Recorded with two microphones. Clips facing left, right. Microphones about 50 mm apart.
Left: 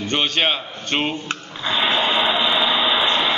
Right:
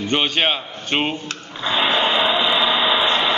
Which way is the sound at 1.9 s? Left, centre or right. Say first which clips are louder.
Right 1 dB; centre.